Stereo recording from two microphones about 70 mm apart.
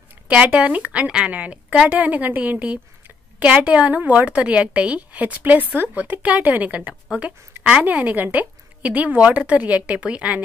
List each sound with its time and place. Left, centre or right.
0.3 s a woman's voice: centre